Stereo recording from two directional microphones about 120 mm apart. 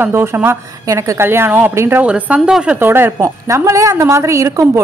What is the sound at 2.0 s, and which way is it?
A woman's voice, 10° right (ahead or behind).